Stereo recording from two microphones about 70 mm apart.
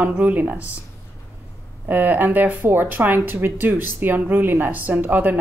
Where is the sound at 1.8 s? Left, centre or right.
Right.